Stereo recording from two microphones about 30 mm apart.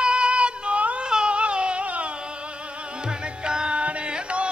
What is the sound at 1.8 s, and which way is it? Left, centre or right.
Music, right.